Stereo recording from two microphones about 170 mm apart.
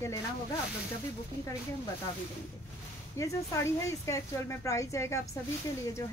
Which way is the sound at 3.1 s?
15° left (ahead or behind).